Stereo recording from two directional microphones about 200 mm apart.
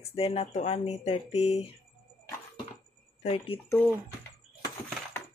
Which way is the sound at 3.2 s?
30° left (ahead or behind).